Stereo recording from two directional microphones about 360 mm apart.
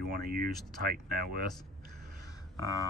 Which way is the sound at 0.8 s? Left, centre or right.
Right.